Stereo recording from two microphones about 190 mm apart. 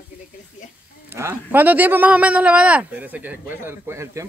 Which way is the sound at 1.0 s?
10° right (ahead or behind).